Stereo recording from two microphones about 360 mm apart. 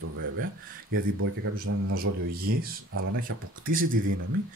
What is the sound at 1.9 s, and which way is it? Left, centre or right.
Speech, right.